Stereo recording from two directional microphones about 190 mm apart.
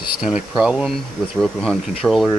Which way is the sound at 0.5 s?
5° right (ahead or behind).